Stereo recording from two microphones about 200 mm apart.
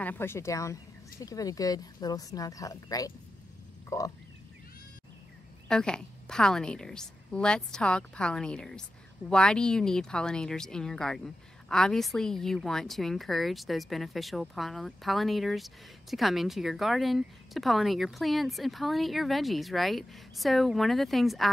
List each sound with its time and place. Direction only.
0.0 s speech: 10° left (ahead or behind)
5.7 s a woman's voice: 5° left (ahead or behind)